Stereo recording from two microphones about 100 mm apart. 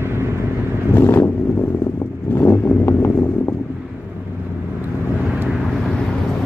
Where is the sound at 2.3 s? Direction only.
20° left (ahead or behind).